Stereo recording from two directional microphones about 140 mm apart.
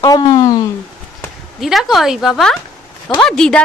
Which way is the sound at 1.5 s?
Centre (ahead or behind).